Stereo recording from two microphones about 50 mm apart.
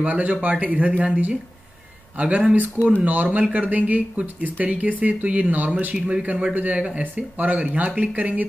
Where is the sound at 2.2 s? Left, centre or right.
Right.